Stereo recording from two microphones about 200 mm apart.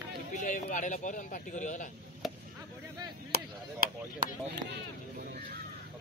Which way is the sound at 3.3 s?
50° right (ahead or behind).